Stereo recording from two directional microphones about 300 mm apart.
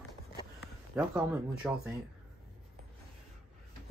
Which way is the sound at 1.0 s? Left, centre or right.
Centre.